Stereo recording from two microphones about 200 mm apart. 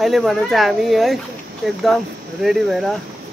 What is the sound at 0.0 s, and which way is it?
Speech, centre (ahead or behind).